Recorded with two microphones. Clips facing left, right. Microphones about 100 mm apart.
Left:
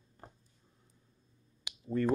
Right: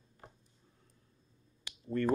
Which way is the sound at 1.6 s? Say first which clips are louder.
Left 1 dB; 10° left (ahead or behind).